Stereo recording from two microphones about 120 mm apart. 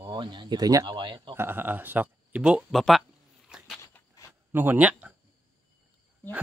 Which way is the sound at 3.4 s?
5° right (ahead or behind).